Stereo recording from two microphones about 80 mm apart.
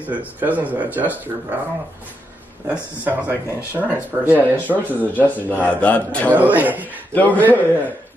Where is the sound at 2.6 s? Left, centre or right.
Centre.